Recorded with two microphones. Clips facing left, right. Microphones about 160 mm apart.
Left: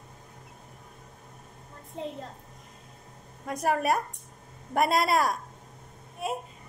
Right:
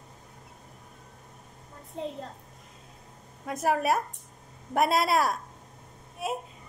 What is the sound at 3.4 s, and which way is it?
A woman's voice, centre (ahead or behind).